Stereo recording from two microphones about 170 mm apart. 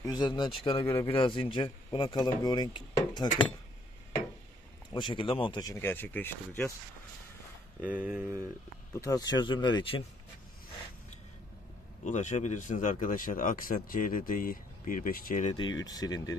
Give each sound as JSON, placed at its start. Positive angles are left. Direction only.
{"t": 0.0, "sound": "a man's voice", "side_deg": 25}
{"t": 4.9, "sound": "a man's voice", "side_deg": 30}
{"t": 8.0, "sound": "speech", "side_deg": -10}
{"t": 9.0, "sound": "a man's voice", "side_deg": 20}
{"t": 12.0, "sound": "speech", "side_deg": 45}
{"t": 15.5, "sound": "a man's voice", "side_deg": 25}